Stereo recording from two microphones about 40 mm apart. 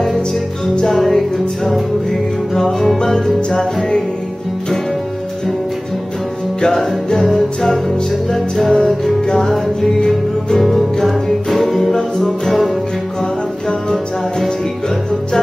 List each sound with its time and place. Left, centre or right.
0.8 s music: centre
6.6 s music: centre
8.3 s music: centre
10.5 s music: centre